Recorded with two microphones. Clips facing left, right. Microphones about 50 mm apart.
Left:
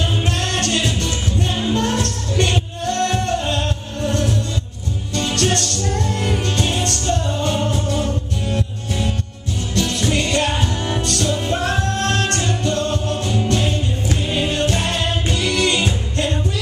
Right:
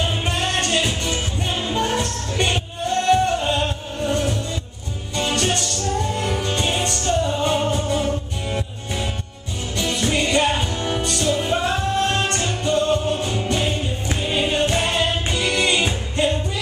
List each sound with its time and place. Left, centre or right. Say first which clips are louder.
0.0 s music: left 1 dB; centre